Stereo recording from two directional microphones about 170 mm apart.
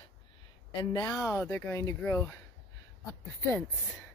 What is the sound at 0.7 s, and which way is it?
Speech, 25° left (ahead or behind).